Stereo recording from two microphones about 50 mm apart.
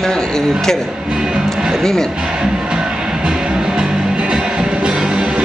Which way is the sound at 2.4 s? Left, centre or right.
Centre.